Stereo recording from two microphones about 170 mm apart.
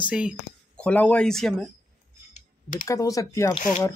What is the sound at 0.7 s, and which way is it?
Speech, 10° left (ahead or behind).